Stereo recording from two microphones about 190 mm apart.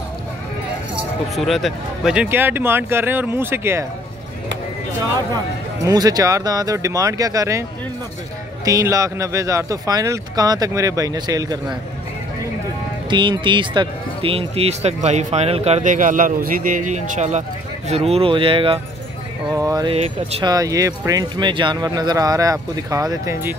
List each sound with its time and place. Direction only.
1.3 s speech: centre (ahead or behind)
5.9 s speech: 20° right (ahead or behind)
8.6 s speech: 15° right (ahead or behind)
13.1 s speech: 25° right (ahead or behind)
19.9 s speech: 35° right (ahead or behind)
20.4 s speech: 20° right (ahead or behind)